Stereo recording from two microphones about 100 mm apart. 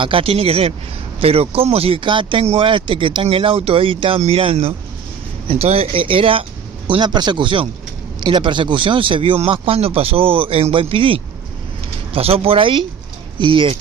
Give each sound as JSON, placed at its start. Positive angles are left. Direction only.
{"t": 0.0, "sound": "speech", "side_deg": -65}
{"t": 2.0, "sound": "speech", "side_deg": -55}
{"t": 6.9, "sound": "speech", "side_deg": -50}
{"t": 12.1, "sound": "speech", "side_deg": -75}